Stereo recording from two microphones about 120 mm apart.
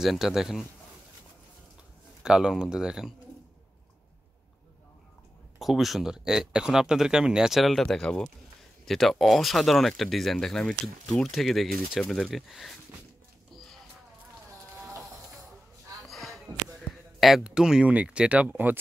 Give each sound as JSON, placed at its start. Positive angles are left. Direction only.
{"t": 0.0, "sound": "speech", "side_deg": -5}
{"t": 2.2, "sound": "speech", "side_deg": -5}
{"t": 5.6, "sound": "speech", "side_deg": 0}
{"t": 16.1, "sound": "a sound", "side_deg": 0}